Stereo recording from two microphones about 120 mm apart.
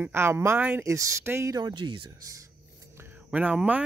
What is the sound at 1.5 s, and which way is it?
Speech, 40° right (ahead or behind).